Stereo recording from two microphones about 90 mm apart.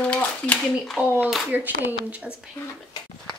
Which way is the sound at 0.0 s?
10° left (ahead or behind).